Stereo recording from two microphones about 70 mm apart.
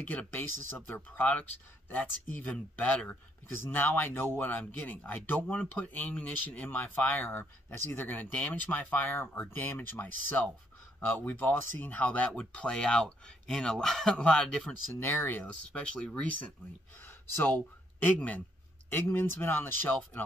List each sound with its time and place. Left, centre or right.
0.0 s speech: left
3.5 s speech: left; by 14.7 s centre
15.0 s speech: left
15.4 s speech: centre
18.0 s speech: left
18.9 s speech: left